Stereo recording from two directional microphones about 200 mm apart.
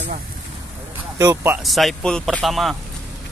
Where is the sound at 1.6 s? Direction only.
Centre (ahead or behind).